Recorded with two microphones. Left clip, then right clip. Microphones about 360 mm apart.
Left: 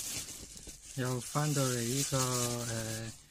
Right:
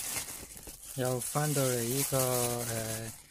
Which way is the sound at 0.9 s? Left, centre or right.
Centre.